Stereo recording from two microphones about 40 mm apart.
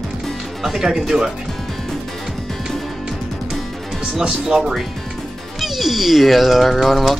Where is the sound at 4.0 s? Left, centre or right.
Centre.